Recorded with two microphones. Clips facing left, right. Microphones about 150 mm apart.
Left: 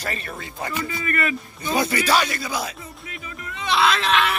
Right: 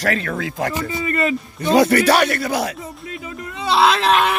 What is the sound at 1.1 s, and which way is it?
Speech, 25° right (ahead or behind).